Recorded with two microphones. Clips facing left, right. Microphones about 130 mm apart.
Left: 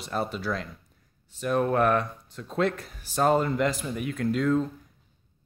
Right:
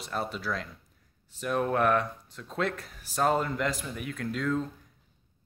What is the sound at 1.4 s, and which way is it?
Speech, centre (ahead or behind).